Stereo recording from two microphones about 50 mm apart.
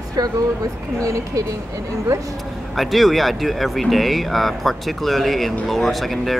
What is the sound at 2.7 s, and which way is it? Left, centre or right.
Speech, centre.